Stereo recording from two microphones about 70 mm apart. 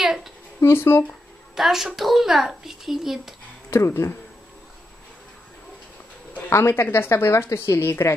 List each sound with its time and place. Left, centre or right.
0.0 s a sound: centre
0.6 s speech: left
1.5 s a woman's voice: centre
3.7 s speech: left
6.5 s a woman's voice: left